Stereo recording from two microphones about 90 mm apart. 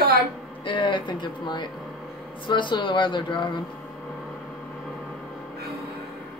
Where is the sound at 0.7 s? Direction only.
65° left (ahead or behind).